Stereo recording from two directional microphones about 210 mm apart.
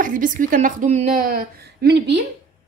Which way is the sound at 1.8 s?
55° right (ahead or behind).